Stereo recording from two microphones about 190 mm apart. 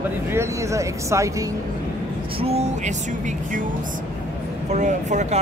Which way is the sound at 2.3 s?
30° right (ahead or behind).